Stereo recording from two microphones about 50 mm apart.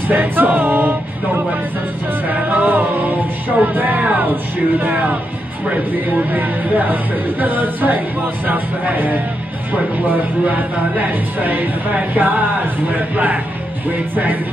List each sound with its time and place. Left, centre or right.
0.1 s music: right
6.1 s speech: right
10.4 s speech: right